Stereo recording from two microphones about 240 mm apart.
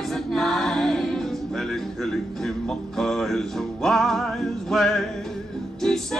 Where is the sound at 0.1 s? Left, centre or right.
Centre.